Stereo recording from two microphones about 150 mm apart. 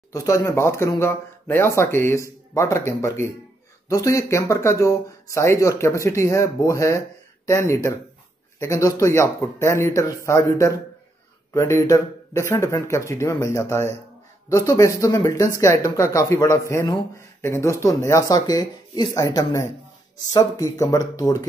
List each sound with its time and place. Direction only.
0.1 s speech: 20° left (ahead or behind)